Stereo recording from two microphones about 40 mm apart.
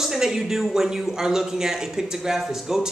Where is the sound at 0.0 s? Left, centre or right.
Centre.